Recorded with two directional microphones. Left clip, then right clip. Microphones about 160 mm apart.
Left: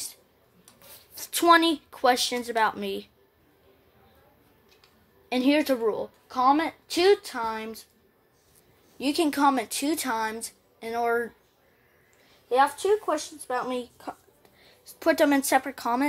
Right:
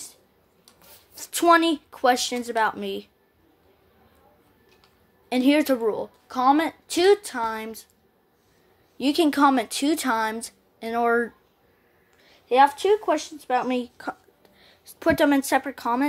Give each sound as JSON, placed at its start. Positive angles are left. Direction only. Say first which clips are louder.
{"t": 0.8, "sound": "speech", "louder": "even", "side_deg": 0}
{"t": 5.3, "sound": "a woman's voice", "louder": "right 3 dB", "side_deg": -15}
{"t": 8.9, "sound": "speech", "louder": "right 4 dB", "side_deg": -25}
{"t": 12.4, "sound": "speech", "louder": "right 4 dB", "side_deg": -30}
{"t": 14.4, "sound": "a woman's voice", "louder": "right 1 dB", "side_deg": -10}